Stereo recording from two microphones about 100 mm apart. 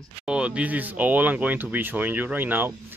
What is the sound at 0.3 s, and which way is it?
Speech, 10° right (ahead or behind).